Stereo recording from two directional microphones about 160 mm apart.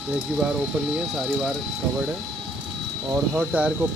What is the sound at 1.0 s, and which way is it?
Speech, centre (ahead or behind).